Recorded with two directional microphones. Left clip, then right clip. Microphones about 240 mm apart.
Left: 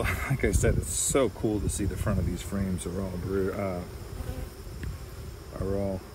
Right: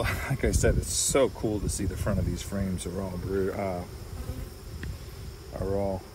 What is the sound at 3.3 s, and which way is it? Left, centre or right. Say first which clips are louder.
Speech: even; centre.